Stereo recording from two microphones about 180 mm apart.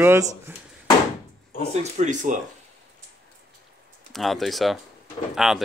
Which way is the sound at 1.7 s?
40° right (ahead or behind).